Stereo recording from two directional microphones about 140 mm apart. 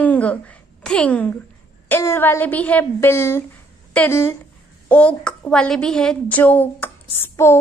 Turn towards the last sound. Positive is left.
turn(degrees=20)  # may be behind; listen again after turning